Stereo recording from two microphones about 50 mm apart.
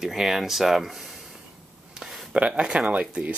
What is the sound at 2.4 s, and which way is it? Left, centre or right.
Speech, right.